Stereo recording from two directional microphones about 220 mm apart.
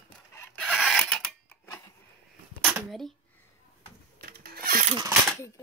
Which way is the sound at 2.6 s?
Centre (ahead or behind).